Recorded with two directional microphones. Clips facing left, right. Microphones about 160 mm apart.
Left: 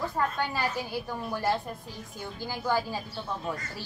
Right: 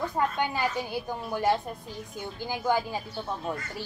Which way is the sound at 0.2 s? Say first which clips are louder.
Right 2 dB; 15° right (ahead or behind).